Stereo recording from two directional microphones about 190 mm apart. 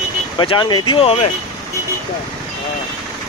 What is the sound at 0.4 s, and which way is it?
Speech, 25° left (ahead or behind).